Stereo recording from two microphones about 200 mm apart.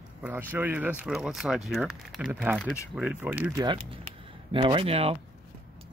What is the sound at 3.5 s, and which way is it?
A man's voice, 25° right (ahead or behind).